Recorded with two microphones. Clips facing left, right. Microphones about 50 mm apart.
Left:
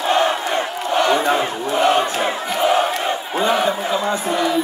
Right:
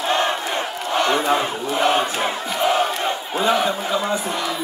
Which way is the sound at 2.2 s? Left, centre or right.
Centre.